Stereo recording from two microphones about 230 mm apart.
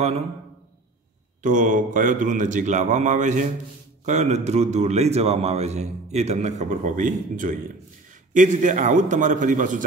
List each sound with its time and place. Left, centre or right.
1.4 s a man's voice: right